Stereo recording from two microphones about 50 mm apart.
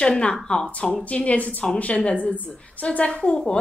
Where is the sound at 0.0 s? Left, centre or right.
Centre.